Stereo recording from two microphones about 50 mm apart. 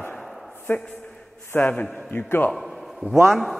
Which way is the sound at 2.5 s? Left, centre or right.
Centre.